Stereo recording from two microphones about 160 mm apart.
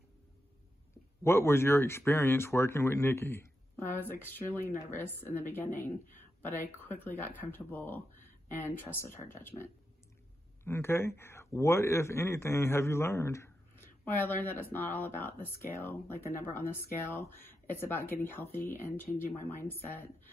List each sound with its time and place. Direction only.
1.2 s speech: 15° left (ahead or behind)